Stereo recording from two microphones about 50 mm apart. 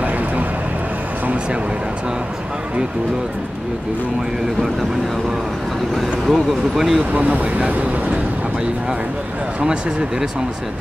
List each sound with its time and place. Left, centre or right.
5.9 s speech: centre
7.1 s speech: right